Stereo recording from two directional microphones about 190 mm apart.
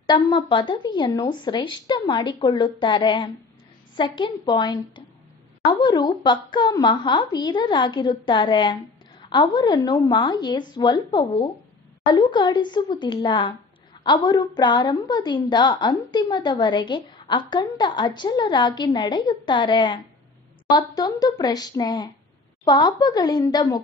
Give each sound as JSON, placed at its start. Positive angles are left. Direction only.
{"t": 0.0, "sound": "a woman's voice", "side_deg": 25}